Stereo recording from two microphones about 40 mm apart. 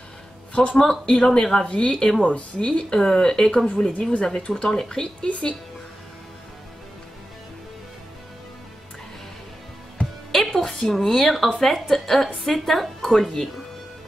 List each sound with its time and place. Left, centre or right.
0.6 s speech: centre
2.9 s a woman's voice: centre
10.0 s music: left
10.3 s music: centre
10.6 s a woman's voice: centre